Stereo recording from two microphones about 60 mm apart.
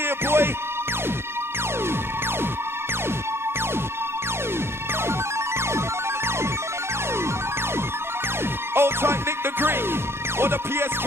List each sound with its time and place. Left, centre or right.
0.0 s music: right
8.7 s music: right